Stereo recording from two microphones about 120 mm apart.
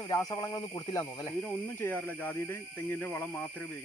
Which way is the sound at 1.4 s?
15° left (ahead or behind).